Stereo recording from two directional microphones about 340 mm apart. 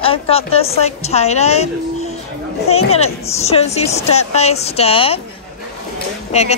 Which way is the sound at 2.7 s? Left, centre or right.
Centre.